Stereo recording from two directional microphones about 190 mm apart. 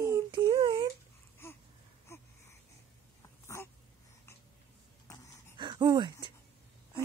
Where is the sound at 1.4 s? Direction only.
15° left (ahead or behind).